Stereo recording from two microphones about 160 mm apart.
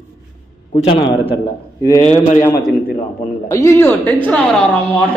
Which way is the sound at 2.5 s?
75° left (ahead or behind).